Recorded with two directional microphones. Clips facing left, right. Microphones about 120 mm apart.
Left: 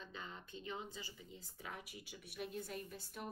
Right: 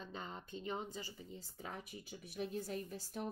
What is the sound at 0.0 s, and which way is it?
Speech, 40° right (ahead or behind).